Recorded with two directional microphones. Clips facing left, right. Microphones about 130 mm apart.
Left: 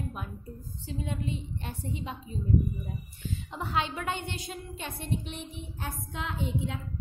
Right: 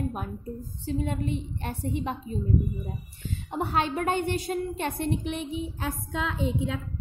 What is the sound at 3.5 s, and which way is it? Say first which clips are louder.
A woman's voice: right 5 dB; 45° right (ahead or behind).